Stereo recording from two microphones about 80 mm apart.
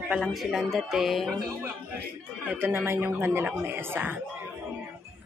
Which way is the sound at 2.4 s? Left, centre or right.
Right.